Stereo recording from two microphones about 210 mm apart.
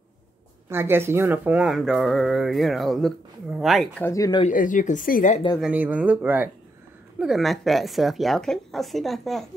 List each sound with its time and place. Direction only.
0.7 s speech: 10° right (ahead or behind)
4.1 s speech: 20° left (ahead or behind)
4.5 s speech: 40° left (ahead or behind)
5.6 s speech: 5° right (ahead or behind)